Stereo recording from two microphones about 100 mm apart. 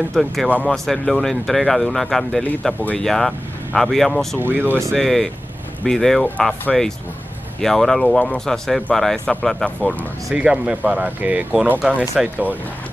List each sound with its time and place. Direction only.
0.1 s speech: centre (ahead or behind)
0.5 s speech: 15° left (ahead or behind)
0.8 s speech: centre (ahead or behind)
4.4 s speech: 20° right (ahead or behind)
4.9 s speech: centre (ahead or behind)
9.8 s speech: 15° left (ahead or behind)
10.3 s speech: 10° right (ahead or behind)